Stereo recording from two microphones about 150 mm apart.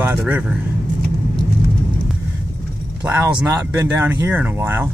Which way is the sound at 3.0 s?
15° right (ahead or behind).